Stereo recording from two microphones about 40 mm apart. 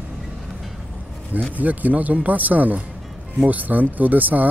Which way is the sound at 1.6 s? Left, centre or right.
Right.